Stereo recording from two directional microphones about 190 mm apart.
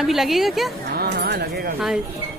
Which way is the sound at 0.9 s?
55° right (ahead or behind).